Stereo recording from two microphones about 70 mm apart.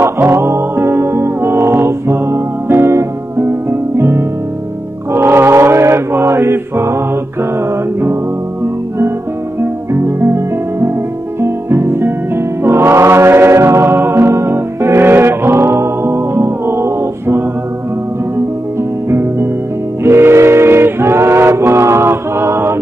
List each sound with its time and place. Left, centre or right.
0.0 s music: right
5.1 s chant: right
9.6 s music: right
20.0 s music: right